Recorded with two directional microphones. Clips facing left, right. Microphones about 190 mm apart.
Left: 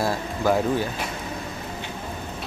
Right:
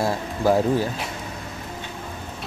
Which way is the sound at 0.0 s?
30° right (ahead or behind).